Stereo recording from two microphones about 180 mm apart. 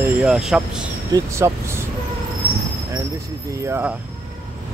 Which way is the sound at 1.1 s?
20° right (ahead or behind).